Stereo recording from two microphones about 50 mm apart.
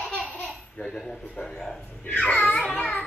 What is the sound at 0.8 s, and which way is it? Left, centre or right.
Speech, centre.